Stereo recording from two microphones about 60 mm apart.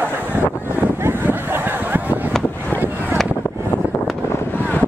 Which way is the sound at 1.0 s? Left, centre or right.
Right.